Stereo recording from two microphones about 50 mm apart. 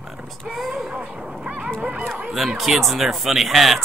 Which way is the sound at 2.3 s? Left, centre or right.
Centre.